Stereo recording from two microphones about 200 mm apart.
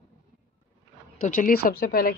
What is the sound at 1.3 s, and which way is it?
Speech, 45° left (ahead or behind).